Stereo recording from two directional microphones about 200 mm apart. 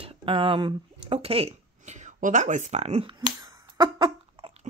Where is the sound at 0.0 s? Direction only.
25° right (ahead or behind).